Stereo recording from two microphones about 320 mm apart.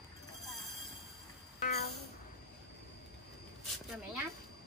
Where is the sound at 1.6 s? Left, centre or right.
Left.